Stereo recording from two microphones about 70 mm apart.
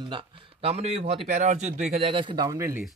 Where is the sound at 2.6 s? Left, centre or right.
Right.